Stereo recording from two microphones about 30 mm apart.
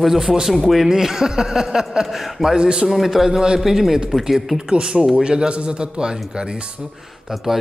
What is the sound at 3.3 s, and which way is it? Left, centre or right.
A man's voice, right.